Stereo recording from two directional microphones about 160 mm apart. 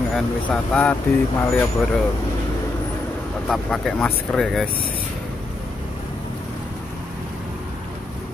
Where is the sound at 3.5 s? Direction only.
5° left (ahead or behind).